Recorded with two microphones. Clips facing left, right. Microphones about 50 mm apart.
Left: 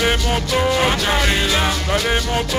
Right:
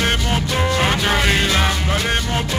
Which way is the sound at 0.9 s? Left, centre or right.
Centre.